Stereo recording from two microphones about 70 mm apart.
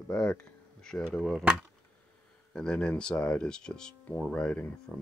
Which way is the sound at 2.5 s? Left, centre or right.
Centre.